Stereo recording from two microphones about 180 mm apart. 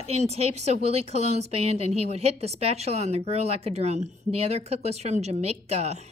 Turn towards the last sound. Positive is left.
turn(degrees=-35)  # may be behind; listen again after turning